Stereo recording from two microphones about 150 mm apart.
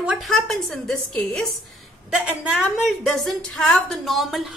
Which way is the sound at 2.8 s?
Centre (ahead or behind).